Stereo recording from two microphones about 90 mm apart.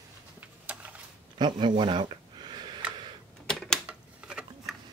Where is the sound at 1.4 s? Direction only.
55° right (ahead or behind).